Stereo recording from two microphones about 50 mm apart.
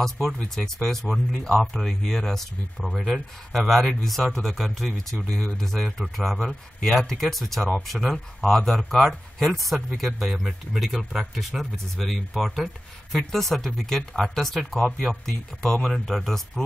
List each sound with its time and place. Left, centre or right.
0.8 s speech: centre
2.9 s speech: centre